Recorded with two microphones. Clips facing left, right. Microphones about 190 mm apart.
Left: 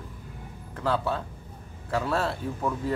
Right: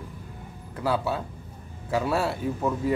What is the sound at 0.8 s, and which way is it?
Speech, 10° right (ahead or behind).